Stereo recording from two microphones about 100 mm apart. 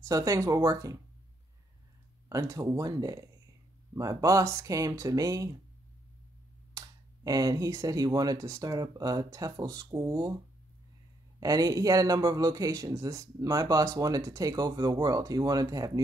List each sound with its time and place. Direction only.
0.0 s speech: 30° right (ahead or behind)
2.2 s speech: 30° right (ahead or behind)
7.2 s speech: 35° right (ahead or behind)
11.3 s speech: 35° right (ahead or behind)